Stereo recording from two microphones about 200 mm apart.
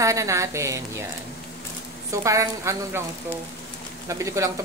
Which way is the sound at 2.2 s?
15° right (ahead or behind).